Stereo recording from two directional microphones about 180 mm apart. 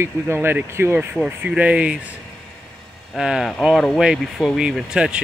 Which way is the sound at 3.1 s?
5° right (ahead or behind).